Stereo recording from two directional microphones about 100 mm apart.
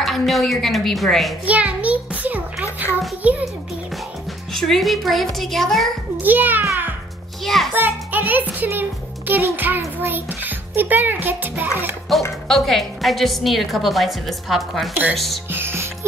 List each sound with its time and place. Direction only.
0.0 s a woman's voice: centre (ahead or behind)
1.4 s a sound: 15° right (ahead or behind)
3.2 s a child's voice: 15° right (ahead or behind)
4.6 s a woman's voice: 5° left (ahead or behind)
6.2 s a child's voice: 20° right (ahead or behind)
7.4 s music: centre (ahead or behind)
7.7 s a child's voice: 20° right (ahead or behind)
9.3 s music: 20° right (ahead or behind)
12.1 s a woman's voice: centre (ahead or behind)
15.5 s music: 25° right (ahead or behind)